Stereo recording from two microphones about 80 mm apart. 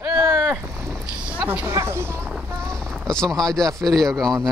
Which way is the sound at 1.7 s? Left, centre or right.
Right.